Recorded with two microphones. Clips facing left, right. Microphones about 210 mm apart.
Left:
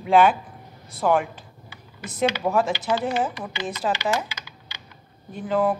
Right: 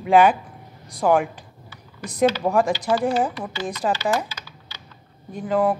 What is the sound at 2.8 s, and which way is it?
Speech, 15° right (ahead or behind).